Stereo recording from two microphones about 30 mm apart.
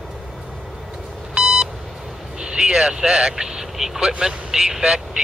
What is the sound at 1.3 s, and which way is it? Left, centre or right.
Beep, right.